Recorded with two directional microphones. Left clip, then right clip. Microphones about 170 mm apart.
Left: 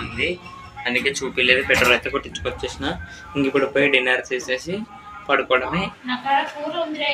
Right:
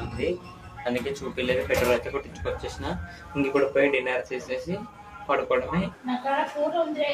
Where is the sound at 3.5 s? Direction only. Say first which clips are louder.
Left 4 dB; centre (ahead or behind).